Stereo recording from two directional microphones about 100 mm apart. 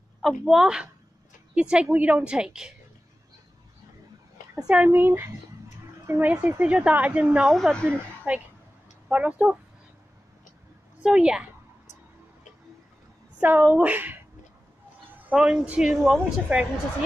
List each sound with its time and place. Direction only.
0.2 s a woman's voice: 5° right (ahead or behind)
4.6 s a woman's voice: 10° right (ahead or behind)
4.9 s a woman's voice: 25° right (ahead or behind)
7.5 s a woman's voice: centre (ahead or behind)
8.3 s a woman's voice: 15° right (ahead or behind)
11.0 s a woman's voice: 10° right (ahead or behind)
13.4 s a woman's voice: 20° right (ahead or behind)
15.2 s a woman's voice: 10° right (ahead or behind)
16.0 s a woman's voice: 5° left (ahead or behind)